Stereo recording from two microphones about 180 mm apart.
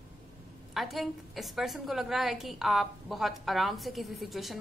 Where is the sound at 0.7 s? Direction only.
Centre (ahead or behind).